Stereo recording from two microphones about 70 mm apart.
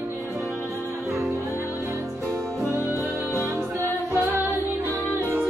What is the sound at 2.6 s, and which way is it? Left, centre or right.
Music, left.